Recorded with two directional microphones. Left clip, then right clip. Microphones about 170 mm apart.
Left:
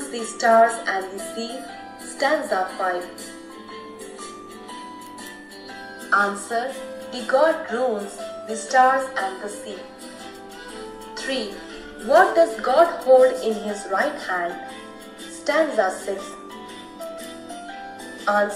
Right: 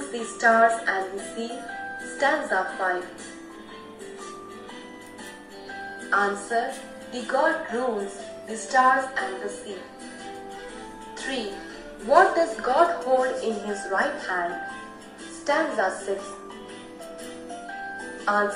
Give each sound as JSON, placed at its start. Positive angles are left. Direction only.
{"t": 0.1, "sound": "a woman's voice", "side_deg": 45}
{"t": 6.0, "sound": "a woman's voice", "side_deg": 45}
{"t": 11.1, "sound": "music", "side_deg": 45}
{"t": 12.1, "sound": "a woman's voice", "side_deg": 45}
{"t": 15.4, "sound": "a woman's voice", "side_deg": 50}